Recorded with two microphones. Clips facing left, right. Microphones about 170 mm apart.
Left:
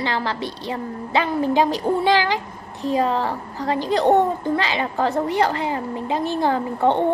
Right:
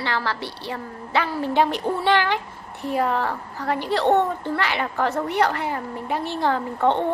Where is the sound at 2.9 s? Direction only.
15° left (ahead or behind).